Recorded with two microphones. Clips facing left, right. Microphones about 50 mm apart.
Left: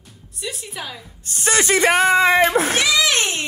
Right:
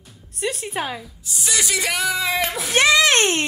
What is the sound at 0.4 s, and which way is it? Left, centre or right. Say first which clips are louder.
Speech: right 6 dB; right.